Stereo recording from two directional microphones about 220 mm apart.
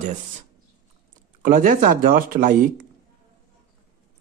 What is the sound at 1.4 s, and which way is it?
Speech, 35° right (ahead or behind).